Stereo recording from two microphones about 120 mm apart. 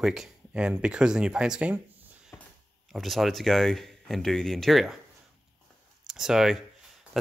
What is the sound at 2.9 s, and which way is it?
Speech, centre (ahead or behind).